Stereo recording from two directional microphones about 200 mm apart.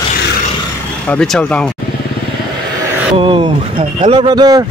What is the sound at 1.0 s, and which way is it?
Speech, 5° left (ahead or behind).